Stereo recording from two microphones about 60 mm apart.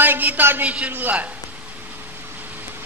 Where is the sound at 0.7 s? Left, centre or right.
Right.